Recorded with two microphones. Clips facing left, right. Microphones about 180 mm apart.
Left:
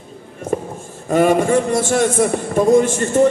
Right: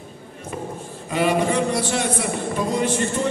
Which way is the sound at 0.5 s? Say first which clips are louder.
Left 11 dB; 45° left (ahead or behind).